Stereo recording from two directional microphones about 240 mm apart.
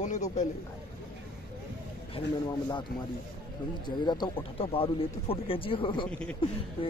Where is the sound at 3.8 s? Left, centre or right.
Centre.